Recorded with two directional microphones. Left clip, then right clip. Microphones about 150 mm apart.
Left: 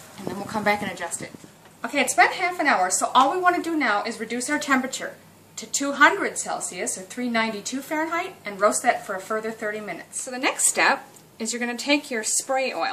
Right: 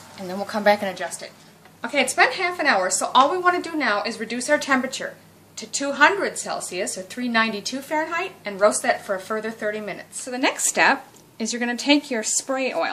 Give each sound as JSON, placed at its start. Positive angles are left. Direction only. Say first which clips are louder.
{"t": 0.5, "sound": "a woman's voice", "louder": "right 4 dB", "side_deg": -60}